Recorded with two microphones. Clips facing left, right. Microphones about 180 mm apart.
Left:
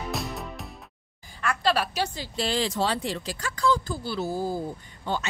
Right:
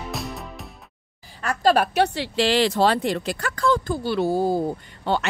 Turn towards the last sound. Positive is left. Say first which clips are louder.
# right 6 dB
turn(degrees=-70)  # may be behind; listen again after turning